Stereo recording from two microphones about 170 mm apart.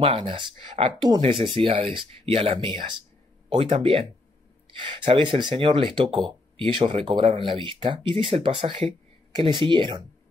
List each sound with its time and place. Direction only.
0.0 s speech: 30° right (ahead or behind)